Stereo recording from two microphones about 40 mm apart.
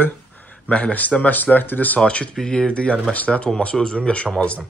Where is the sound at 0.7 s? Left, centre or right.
Left.